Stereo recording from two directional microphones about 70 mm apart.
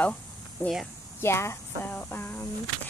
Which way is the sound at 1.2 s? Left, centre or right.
Left.